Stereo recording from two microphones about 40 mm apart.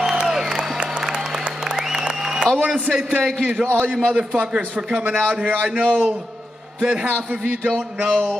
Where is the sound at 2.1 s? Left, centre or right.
Centre.